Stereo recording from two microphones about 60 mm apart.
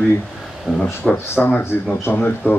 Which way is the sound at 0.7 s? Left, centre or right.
Centre.